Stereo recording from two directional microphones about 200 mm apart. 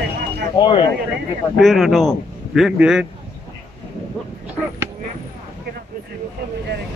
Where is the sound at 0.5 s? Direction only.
25° left (ahead or behind).